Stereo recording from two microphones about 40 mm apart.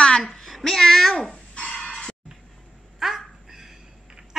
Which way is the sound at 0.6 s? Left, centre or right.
Centre.